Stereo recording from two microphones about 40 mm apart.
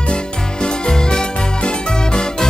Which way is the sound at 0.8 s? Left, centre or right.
Centre.